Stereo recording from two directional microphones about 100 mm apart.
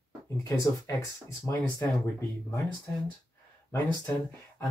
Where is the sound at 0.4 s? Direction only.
30° left (ahead or behind).